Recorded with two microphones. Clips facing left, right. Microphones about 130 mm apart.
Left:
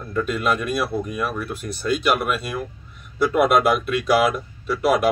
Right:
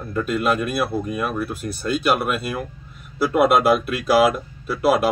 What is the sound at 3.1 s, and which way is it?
Speech, 5° right (ahead or behind).